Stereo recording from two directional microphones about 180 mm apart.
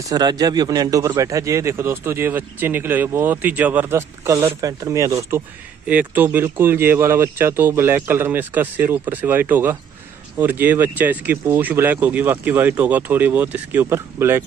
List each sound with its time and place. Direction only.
0.1 s a man's voice: 20° right (ahead or behind)